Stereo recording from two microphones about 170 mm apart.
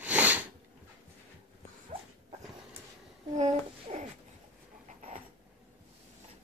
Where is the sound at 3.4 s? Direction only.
40° right (ahead or behind).